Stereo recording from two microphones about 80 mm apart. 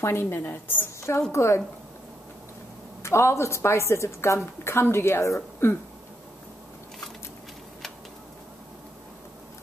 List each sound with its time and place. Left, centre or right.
0.0 s a woman's voice: left
3.0 s a woman's voice: left